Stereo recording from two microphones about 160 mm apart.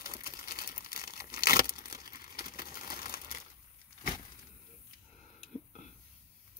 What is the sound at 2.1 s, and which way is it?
Crumpling, 65° left (ahead or behind).